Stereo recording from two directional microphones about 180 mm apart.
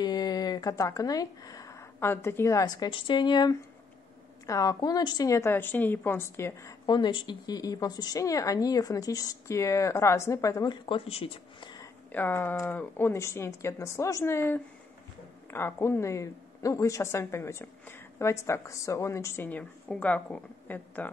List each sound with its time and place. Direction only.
0.0 s a woman's voice: 20° left (ahead or behind)
12.1 s a woman's voice: 10° left (ahead or behind)